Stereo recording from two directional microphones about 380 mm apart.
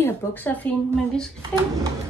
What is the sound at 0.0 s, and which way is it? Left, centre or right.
Speech, centre.